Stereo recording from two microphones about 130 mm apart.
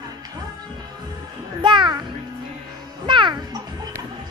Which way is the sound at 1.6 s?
35° right (ahead or behind).